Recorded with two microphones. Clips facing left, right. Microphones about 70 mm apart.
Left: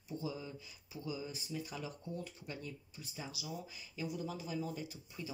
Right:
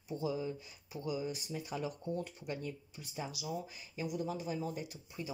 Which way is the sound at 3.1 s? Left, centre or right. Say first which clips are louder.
Right 5 dB; right.